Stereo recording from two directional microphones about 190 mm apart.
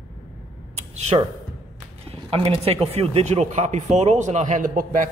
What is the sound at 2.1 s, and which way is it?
A man's voice, 30° right (ahead or behind).